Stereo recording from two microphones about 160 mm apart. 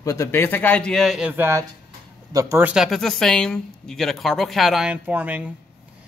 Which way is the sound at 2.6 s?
5° right (ahead or behind).